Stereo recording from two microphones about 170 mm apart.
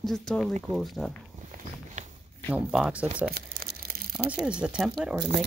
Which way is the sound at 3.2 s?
60° right (ahead or behind).